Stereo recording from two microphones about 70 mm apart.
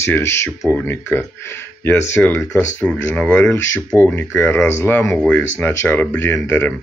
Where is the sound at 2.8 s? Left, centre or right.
Centre.